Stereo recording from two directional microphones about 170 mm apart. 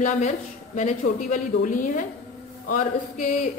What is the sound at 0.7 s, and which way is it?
A woman's voice, 45° left (ahead or behind).